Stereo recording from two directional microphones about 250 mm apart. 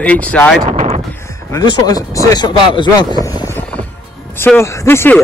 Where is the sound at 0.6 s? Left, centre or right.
Right.